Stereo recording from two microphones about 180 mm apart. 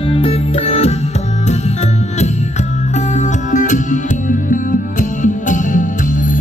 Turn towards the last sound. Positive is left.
turn(degrees=45)  # may be behind; listen again after turning